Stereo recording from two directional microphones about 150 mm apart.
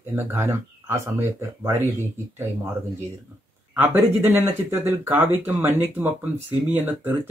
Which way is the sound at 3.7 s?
15° right (ahead or behind).